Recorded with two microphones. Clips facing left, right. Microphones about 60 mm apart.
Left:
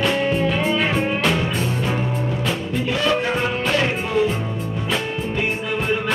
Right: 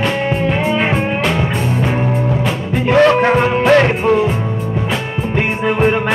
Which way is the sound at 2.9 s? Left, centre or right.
Right.